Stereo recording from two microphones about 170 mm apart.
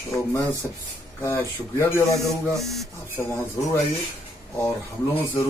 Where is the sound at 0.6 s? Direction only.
Centre (ahead or behind).